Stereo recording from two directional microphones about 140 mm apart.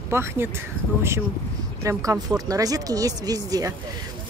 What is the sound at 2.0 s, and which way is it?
Speech, 25° right (ahead or behind).